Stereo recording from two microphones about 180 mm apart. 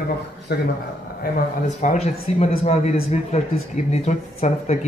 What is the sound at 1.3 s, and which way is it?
A man's voice, 45° left (ahead or behind).